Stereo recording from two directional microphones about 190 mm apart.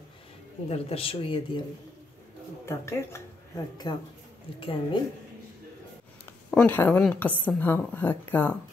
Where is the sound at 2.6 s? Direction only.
15° left (ahead or behind).